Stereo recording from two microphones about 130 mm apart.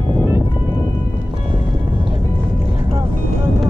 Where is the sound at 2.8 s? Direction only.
20° right (ahead or behind).